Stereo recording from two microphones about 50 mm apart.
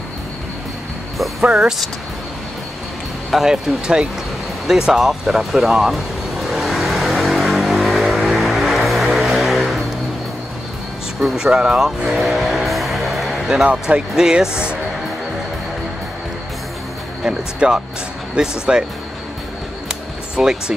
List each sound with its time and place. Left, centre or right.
1.5 s speech: centre
3.3 s speech: centre
3.8 s speech: centre
4.6 s music: centre
11.1 s vehicle: centre
14.1 s speech: centre
17.2 s speech: centre
19.9 s music: centre